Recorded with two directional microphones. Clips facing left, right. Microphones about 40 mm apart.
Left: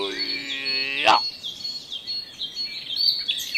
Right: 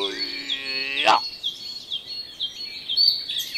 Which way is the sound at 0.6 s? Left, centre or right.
Centre.